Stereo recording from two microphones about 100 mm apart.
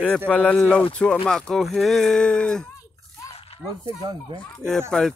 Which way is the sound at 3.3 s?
85° left.